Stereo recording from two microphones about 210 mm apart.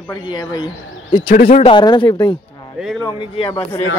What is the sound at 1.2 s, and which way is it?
Speech, 40° left (ahead or behind).